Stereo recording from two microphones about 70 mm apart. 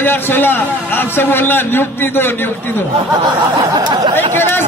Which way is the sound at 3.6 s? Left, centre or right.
Right.